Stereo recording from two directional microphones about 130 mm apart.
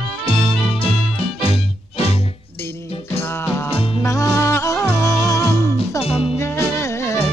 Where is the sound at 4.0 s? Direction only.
20° left (ahead or behind).